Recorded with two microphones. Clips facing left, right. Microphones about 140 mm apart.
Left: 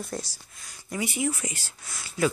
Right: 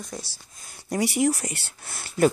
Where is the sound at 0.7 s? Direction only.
45° right (ahead or behind).